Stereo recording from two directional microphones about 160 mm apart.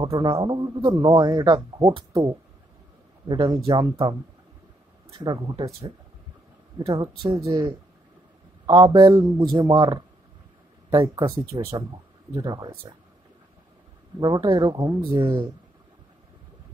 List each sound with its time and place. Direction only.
0.0 s speech: 30° right (ahead or behind)
1.8 s speech: 35° right (ahead or behind)
3.3 s speech: 25° right (ahead or behind)
6.9 s speech: 30° right (ahead or behind)
11.2 s speech: 20° right (ahead or behind)
14.2 s speech: 25° right (ahead or behind)